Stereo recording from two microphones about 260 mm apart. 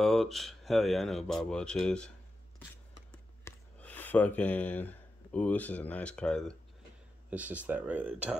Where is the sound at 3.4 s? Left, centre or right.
Centre.